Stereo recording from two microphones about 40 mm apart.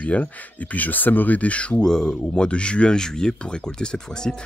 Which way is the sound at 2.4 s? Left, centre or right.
Left.